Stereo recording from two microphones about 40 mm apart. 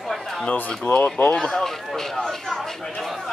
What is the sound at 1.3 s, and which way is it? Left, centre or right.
Speech, centre.